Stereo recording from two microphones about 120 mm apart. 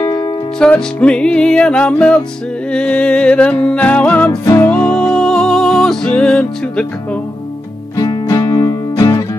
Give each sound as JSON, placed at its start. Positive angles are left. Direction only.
{"t": 0.6, "sound": "music", "side_deg": 5}
{"t": 8.0, "sound": "music", "side_deg": 30}